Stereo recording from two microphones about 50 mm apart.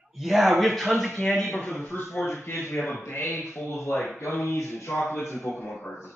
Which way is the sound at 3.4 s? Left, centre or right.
Centre.